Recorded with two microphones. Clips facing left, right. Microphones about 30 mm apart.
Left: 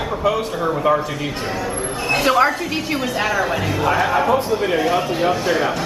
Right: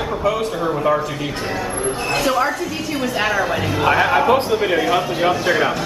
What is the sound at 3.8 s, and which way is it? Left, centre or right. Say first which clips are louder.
Speech: right 3 dB; right.